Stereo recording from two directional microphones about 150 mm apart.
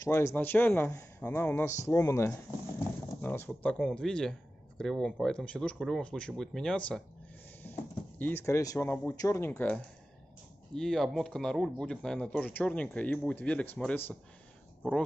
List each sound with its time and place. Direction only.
0.0 s speech: 15° left (ahead or behind)
7.7 s a sound: 10° left (ahead or behind)
8.2 s speech: 15° left (ahead or behind)
10.7 s speech: 5° left (ahead or behind)